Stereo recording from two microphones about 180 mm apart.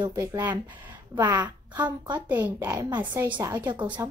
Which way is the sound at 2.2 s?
10° right (ahead or behind).